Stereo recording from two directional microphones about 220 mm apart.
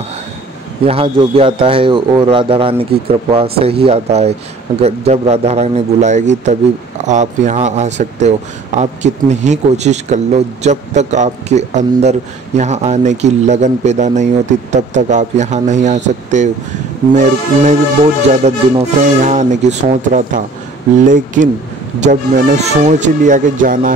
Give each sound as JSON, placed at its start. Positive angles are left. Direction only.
{"t": 0.8, "sound": "a man's voice", "side_deg": -25}